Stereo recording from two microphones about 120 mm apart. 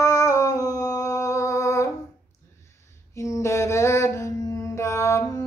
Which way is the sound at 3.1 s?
25° left (ahead or behind).